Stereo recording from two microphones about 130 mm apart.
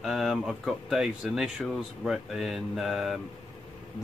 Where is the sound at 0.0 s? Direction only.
Centre (ahead or behind).